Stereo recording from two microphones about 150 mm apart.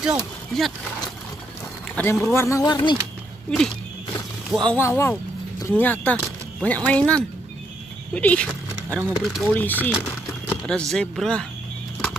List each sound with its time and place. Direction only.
0.5 s speech: 5° left (ahead or behind)
2.0 s speech: 10° left (ahead or behind); by 3.0 s 30° left (ahead or behind)
3.4 s speech: 5° left (ahead or behind)
4.7 s speech: 20° left (ahead or behind)